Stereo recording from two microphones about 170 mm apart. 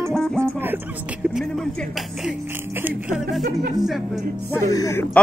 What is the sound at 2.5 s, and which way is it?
A man's voice, 10° right (ahead or behind).